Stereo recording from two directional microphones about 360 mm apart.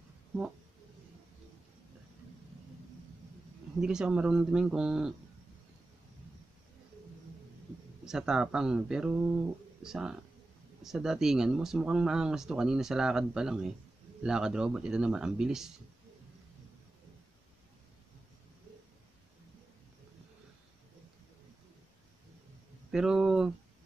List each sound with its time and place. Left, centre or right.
3.8 s speech: centre
8.0 s speech: centre
22.8 s a sound: centre